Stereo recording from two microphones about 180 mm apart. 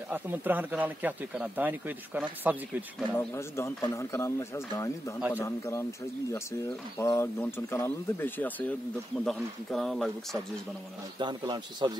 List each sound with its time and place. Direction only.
0.1 s speech: 10° right (ahead or behind)
3.2 s speech: 15° left (ahead or behind)
11.1 s a man's voice: 25° right (ahead or behind)